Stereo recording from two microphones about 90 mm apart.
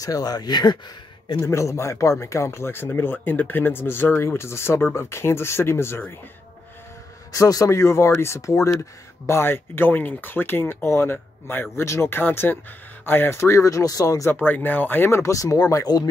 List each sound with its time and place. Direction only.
0.0 s speech: 45° left (ahead or behind)
1.4 s speech: 35° left (ahead or behind)
7.3 s speech: 40° left (ahead or behind)
14.3 s speech: 20° left (ahead or behind); by 16.0 s 40° left (ahead or behind)